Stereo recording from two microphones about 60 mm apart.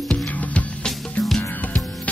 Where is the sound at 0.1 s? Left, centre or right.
Left.